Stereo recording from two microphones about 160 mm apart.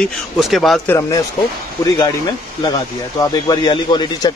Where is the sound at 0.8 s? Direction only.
15° left (ahead or behind).